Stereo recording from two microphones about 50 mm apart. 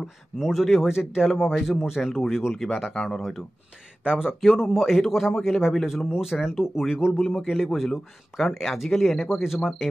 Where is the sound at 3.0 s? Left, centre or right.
Centre.